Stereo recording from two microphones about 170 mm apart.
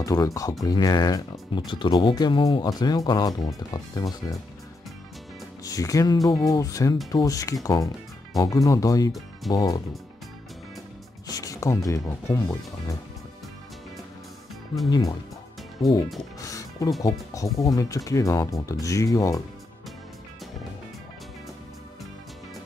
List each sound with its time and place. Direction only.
0.0 s speech: 20° left (ahead or behind)
5.6 s speech: 20° left (ahead or behind)
11.2 s speech: 20° left (ahead or behind)
14.9 s speech: 20° left (ahead or behind)
16.3 s music: 20° left (ahead or behind)
17.0 s speech: 20° left (ahead or behind)